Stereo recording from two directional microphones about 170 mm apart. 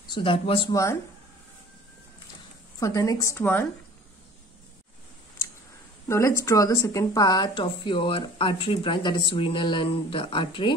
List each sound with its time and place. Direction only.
0.1 s speech: 30° left (ahead or behind)
2.8 s a woman's voice: 20° left (ahead or behind)
6.0 s speech: 15° left (ahead or behind)